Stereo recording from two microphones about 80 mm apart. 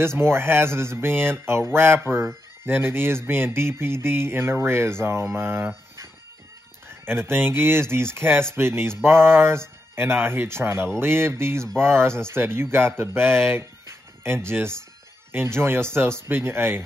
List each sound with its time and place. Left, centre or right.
0.0 s speech: right
6.9 s speech: right